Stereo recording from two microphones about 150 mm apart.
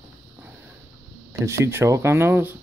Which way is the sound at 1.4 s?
15° right (ahead or behind).